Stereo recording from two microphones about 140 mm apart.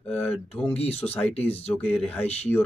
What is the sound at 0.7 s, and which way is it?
Speech, 50° left (ahead or behind).